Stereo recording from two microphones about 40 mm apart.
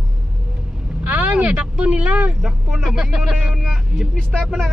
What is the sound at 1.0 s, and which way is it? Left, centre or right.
Vehicle, right.